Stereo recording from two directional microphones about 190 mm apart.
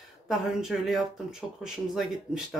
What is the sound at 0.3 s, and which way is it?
Speech, centre (ahead or behind).